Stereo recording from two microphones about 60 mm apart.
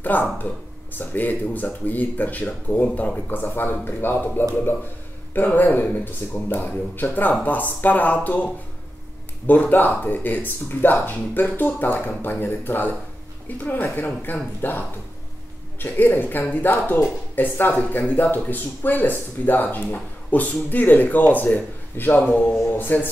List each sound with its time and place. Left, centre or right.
0.0 s a man's voice: left
9.5 s a man's voice: left
15.8 s a man's voice: left